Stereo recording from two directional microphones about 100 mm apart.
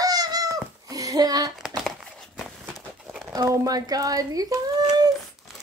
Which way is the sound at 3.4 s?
35° right (ahead or behind).